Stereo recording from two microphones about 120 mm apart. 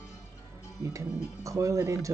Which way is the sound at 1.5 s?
25° right (ahead or behind).